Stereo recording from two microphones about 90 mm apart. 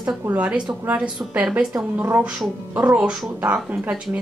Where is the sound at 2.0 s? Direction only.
25° right (ahead or behind).